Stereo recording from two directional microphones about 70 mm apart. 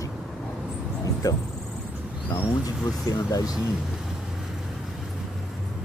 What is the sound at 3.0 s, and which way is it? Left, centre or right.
Speech, left.